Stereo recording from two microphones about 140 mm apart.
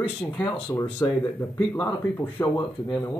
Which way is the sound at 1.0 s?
20° left (ahead or behind).